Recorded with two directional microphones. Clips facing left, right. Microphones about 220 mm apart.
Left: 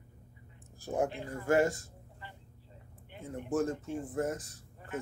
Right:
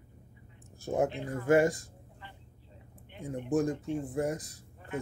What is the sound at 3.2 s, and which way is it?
Speech, 15° right (ahead or behind).